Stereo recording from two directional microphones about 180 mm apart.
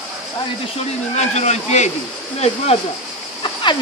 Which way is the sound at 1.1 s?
40° left (ahead or behind).